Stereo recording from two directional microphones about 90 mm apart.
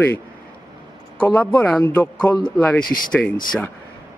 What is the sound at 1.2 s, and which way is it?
A man's voice, 15° left (ahead or behind).